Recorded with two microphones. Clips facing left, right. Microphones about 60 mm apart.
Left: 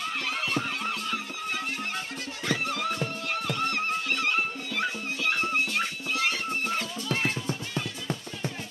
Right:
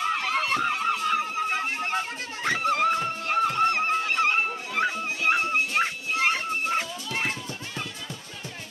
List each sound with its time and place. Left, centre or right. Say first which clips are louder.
0.0 s music: right 5 dB; right